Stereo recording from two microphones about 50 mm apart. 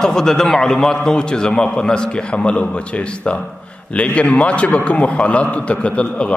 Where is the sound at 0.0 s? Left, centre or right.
Centre.